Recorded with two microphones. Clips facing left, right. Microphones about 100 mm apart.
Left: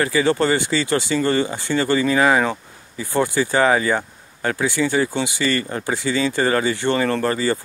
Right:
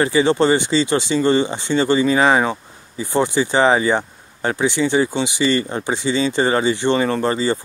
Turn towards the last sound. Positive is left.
turn(degrees=-20)  # may be behind; listen again after turning